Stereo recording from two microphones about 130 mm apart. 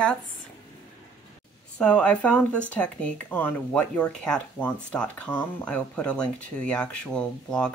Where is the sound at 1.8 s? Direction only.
10° left (ahead or behind).